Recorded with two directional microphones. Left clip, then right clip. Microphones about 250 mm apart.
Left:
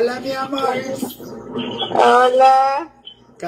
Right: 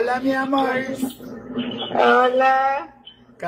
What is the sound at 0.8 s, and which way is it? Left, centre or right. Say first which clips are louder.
Speech: left 1 dB; left.